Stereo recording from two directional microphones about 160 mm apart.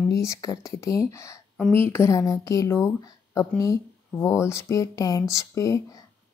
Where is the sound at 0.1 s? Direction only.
20° left (ahead or behind).